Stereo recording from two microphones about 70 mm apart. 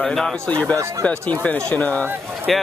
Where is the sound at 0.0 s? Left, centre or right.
Centre.